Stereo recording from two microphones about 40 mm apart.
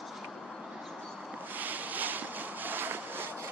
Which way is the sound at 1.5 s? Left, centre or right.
Right.